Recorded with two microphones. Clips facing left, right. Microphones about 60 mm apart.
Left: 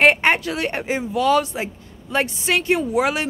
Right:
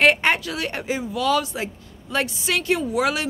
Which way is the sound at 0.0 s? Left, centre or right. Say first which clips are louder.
Left 2 dB; left.